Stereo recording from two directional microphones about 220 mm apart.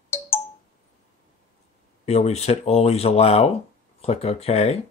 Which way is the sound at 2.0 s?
30° left (ahead or behind).